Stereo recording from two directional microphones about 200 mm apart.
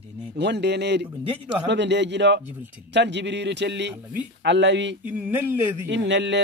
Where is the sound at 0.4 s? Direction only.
60° right (ahead or behind).